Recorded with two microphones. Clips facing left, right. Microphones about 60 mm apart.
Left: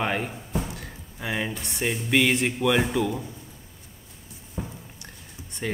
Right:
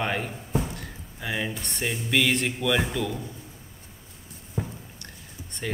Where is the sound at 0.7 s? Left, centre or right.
Centre.